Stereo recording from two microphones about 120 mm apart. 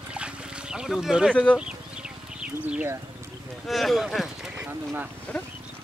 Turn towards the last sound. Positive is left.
turn(degrees=-15)  # may be behind; listen again after turning